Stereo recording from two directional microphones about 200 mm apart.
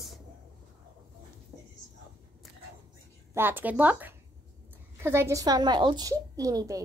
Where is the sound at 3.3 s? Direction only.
10° right (ahead or behind).